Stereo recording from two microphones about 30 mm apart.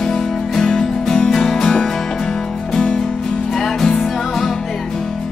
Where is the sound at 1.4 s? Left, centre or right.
Centre.